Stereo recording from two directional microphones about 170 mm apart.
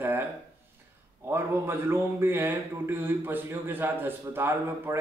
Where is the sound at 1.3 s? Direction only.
15° right (ahead or behind).